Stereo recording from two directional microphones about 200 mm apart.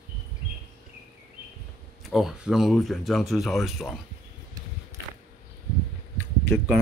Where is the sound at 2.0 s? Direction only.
Centre (ahead or behind).